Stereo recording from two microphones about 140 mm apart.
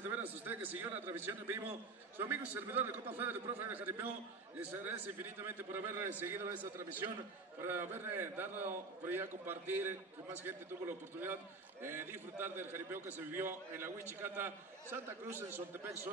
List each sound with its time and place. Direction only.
0.2 s a man's voice: 15° right (ahead or behind)